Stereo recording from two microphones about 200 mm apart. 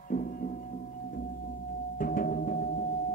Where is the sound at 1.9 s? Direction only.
45° left (ahead or behind).